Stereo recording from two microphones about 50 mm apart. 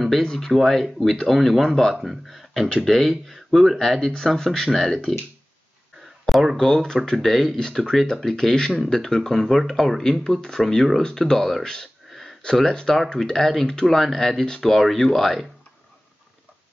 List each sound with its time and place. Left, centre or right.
0.2 s speech: centre
0.5 s speech: centre
6.2 s speech: centre
12.1 s a sound: centre
12.4 s speech: centre